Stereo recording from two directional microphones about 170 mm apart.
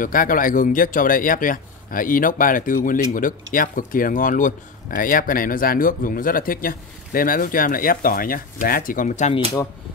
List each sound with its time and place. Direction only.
0.0 s speech: 55° left (ahead or behind)